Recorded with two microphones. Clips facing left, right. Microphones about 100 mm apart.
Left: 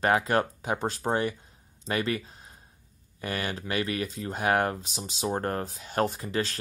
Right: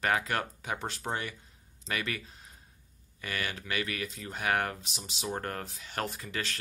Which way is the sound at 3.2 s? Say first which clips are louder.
Left 5 dB; 35° left (ahead or behind).